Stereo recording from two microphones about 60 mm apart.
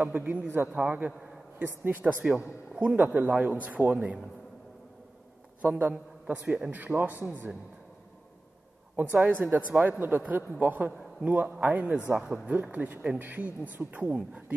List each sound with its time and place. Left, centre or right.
0.0 s a man's voice: right
5.6 s a man's voice: right
6.9 s a man's voice: right
8.9 s a man's voice: right
12.1 s speech: centre
12.6 s a man's voice: right